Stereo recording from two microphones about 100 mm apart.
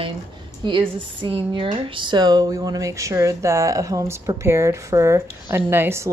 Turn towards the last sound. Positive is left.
turn(degrees=-25)  # may be behind; listen again after turning